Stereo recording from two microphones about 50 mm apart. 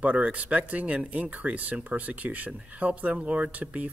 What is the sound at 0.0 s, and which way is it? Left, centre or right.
Speech, right.